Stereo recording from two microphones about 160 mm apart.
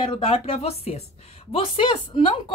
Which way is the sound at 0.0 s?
35° left (ahead or behind).